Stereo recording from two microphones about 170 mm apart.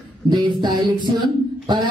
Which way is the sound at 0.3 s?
25° right (ahead or behind).